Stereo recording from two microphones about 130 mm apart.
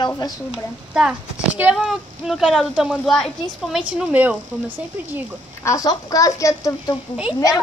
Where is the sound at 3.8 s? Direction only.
10° right (ahead or behind).